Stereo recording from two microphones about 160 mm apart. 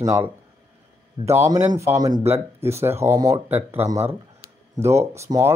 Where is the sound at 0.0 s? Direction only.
20° right (ahead or behind).